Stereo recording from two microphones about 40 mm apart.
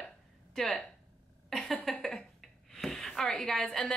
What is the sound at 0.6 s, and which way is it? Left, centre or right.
Speech, centre.